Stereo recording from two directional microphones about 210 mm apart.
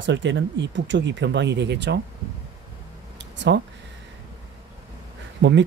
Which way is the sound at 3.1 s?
55° right (ahead or behind).